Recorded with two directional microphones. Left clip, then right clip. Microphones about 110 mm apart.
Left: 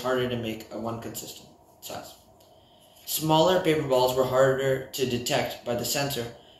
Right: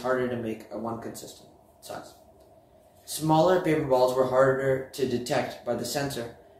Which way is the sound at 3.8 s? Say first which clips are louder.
Even; 45° right (ahead or behind).